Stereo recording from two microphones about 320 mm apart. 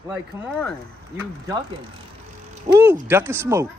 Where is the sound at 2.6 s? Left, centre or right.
Centre.